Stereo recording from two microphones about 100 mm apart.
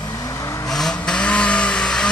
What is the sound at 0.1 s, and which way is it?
Vehicle, 35° left (ahead or behind).